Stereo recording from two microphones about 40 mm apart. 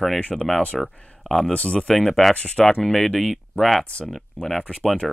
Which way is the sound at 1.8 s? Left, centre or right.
Centre.